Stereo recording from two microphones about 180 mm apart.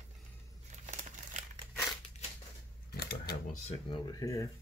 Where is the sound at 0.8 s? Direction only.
40° right (ahead or behind).